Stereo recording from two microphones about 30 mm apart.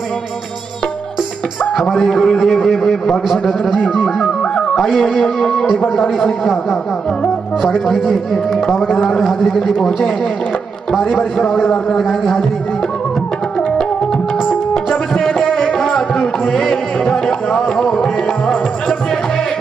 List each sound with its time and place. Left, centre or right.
1.9 s a man's voice: centre
3.3 s a man's voice: centre
4.9 s a man's voice: centre
6.4 s speech: centre
7.9 s a man's voice: centre
8.5 s a man's voice: left
9.2 s a man's voice: centre
11.1 s a man's voice: centre
15.2 s music: centre